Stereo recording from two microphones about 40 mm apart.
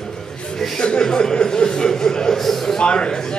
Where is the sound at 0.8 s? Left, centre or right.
Left.